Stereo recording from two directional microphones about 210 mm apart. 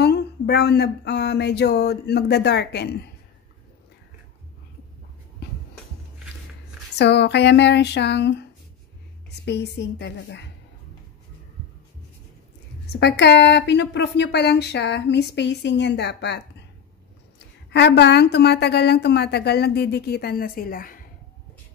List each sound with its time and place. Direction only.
0.0 s a woman's voice: 50° left (ahead or behind)
7.0 s a woman's voice: 55° left (ahead or behind)
9.5 s a woman's voice: 55° left (ahead or behind)
13.0 s a woman's voice: 55° left (ahead or behind)